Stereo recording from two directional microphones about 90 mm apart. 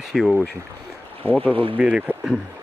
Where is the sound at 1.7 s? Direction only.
10° right (ahead or behind).